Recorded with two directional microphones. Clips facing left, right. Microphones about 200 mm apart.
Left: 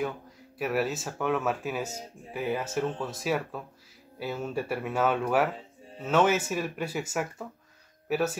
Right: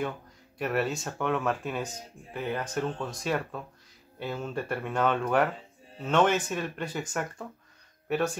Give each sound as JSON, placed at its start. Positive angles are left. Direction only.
{"t": 0.6, "sound": "speech", "side_deg": 5}